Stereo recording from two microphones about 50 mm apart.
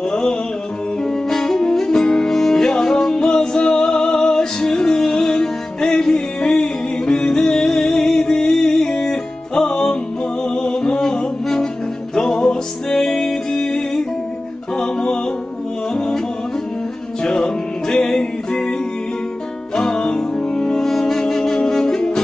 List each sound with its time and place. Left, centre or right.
0.1 s music: centre
17.2 s music: centre
20.8 s saxophone: centre